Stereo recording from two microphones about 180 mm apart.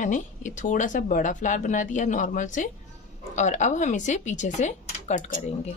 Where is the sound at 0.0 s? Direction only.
45° left (ahead or behind).